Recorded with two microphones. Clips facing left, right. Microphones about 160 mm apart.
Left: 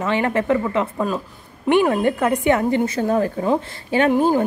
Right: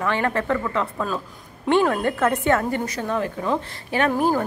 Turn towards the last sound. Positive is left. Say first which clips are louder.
# left 4 dB
turn(degrees=25)  # may be behind; listen again after turning